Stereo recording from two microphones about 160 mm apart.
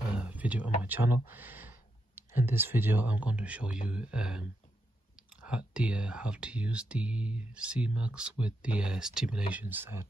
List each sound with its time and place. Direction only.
0.2 s speech: 10° right (ahead or behind)